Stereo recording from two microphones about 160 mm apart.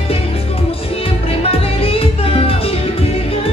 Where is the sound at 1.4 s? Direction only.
35° left (ahead or behind).